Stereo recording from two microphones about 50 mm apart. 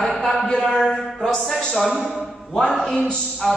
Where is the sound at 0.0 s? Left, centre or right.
Centre.